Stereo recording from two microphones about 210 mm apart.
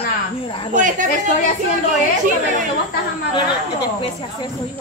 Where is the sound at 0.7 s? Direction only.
35° right (ahead or behind).